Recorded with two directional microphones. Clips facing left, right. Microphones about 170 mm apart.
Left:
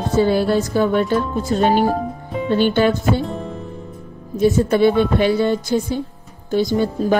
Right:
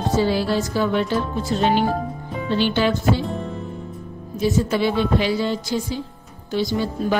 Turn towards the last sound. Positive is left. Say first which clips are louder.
# left 4 dB
turn(degrees=40)  # may be behind; listen again after turning